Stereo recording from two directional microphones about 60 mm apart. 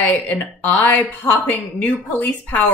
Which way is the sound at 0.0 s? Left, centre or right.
Left.